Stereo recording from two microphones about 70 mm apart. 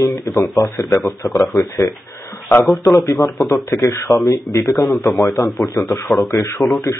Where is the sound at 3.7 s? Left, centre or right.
Left.